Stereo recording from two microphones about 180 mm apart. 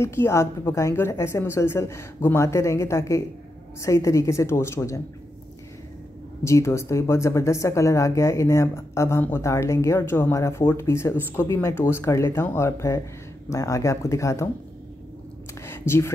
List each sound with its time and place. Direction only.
0.0 s speech: 15° left (ahead or behind)
6.4 s speech: 15° left (ahead or behind)
15.6 s a sound: 15° left (ahead or behind)